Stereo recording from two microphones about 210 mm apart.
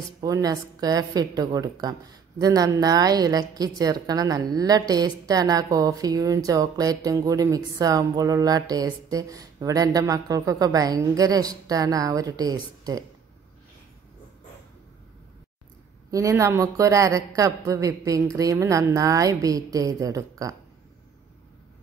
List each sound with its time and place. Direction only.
0.2 s a woman's voice: 15° right (ahead or behind)
16.1 s a woman's voice: 15° right (ahead or behind)